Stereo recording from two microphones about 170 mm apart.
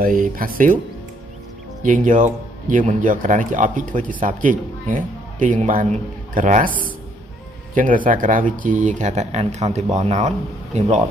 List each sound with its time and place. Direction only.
0.0 s speech: 55° right (ahead or behind)
1.8 s speech: 50° right (ahead or behind)
7.7 s speech: 50° right (ahead or behind)